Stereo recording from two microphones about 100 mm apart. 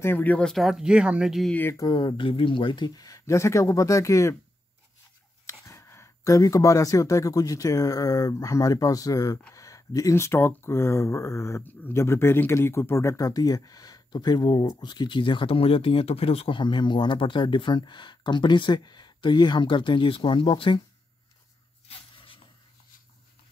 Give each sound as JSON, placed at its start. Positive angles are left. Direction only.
{"t": 0.0, "sound": "speech", "side_deg": 20}
{"t": 0.5, "sound": "speech", "side_deg": 0}
{"t": 1.8, "sound": "speech", "side_deg": 50}
{"t": 5.5, "sound": "speech", "side_deg": 30}
{"t": 16.5, "sound": "speech", "side_deg": 50}
{"t": 21.8, "sound": "a sound", "side_deg": 60}